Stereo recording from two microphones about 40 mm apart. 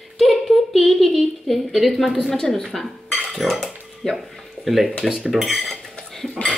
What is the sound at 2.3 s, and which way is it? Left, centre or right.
Speech, centre.